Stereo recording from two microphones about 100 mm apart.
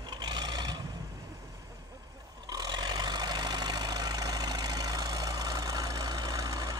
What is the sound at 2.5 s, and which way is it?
Vehicle, 45° right (ahead or behind).